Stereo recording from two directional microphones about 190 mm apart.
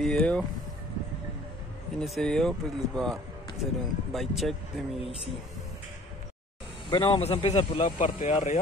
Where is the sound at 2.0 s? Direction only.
Centre (ahead or behind).